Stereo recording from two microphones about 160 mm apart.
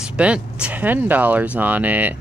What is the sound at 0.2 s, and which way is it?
Speech, 5° right (ahead or behind).